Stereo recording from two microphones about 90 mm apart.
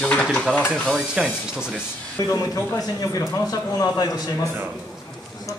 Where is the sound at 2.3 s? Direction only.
40° left (ahead or behind).